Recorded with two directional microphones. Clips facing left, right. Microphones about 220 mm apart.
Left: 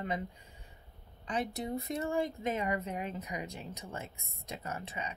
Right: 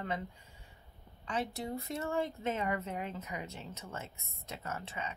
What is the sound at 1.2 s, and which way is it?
Speech, 20° left (ahead or behind).